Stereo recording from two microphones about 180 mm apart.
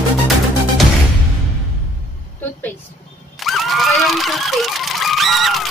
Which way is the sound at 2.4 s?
10° left (ahead or behind).